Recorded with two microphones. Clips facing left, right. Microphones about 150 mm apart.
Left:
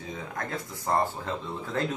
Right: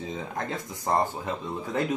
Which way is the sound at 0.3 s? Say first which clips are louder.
Right 2 dB; 25° right (ahead or behind).